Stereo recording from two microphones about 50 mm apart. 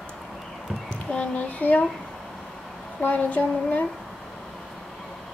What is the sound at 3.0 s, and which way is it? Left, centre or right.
Speech, left.